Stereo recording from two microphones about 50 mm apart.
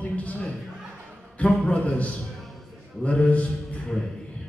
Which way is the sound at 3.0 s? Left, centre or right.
Left.